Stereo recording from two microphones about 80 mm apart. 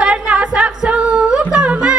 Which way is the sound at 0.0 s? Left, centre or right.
Centre.